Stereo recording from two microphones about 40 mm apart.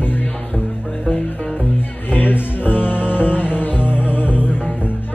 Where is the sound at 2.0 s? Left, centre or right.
Left.